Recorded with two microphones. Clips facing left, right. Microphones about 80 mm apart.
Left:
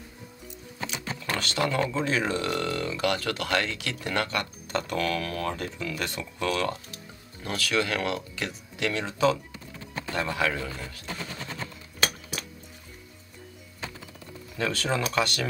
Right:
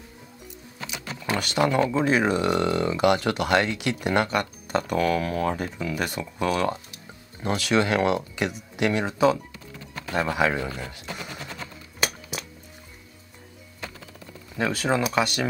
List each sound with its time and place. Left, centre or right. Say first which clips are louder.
1.2 s speech: right 5 dB; centre
14.6 s speech: right 4 dB; centre